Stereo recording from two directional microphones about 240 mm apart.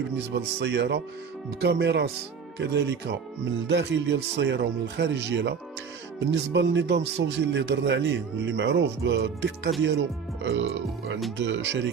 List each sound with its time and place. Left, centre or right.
0.1 s speech: right